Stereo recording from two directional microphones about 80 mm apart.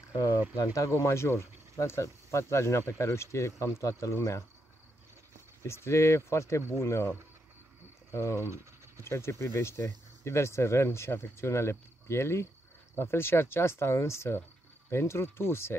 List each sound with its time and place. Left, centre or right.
0.1 s speech: left
0.7 s speech: left
5.6 s speech: left
8.1 s speech: left
8.4 s scratch: right
9.0 s speech: left